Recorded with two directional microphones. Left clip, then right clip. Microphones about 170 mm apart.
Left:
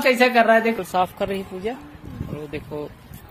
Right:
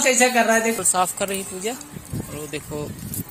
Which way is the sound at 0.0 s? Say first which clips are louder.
Left 1 dB; 20° left (ahead or behind).